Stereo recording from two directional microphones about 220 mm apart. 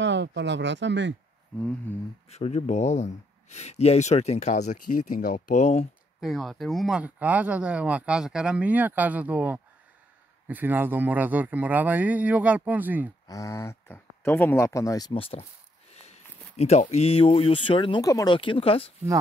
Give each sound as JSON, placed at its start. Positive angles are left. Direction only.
{"t": 0.0, "sound": "speech", "side_deg": -55}
{"t": 1.9, "sound": "speech", "side_deg": 10}
{"t": 2.2, "sound": "speech", "side_deg": 30}
{"t": 6.2, "sound": "speech", "side_deg": 0}
{"t": 13.3, "sound": "speech", "side_deg": 15}